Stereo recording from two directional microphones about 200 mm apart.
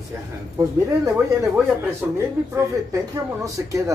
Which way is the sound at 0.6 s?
15° right (ahead or behind).